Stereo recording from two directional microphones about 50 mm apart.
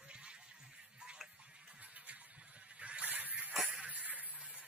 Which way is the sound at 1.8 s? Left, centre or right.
Right.